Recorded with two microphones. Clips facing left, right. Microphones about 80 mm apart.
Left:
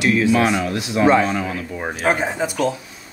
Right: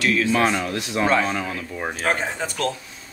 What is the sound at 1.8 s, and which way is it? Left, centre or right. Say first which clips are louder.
Speech: left 4 dB; centre.